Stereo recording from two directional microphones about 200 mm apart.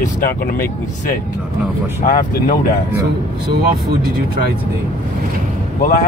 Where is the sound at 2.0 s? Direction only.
40° left (ahead or behind).